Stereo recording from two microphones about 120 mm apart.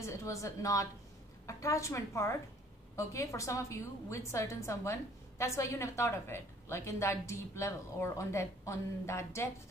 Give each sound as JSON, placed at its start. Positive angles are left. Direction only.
{"t": 0.0, "sound": "a woman's voice", "side_deg": 25}